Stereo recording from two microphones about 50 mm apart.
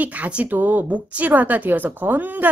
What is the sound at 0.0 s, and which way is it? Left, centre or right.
Speech, right.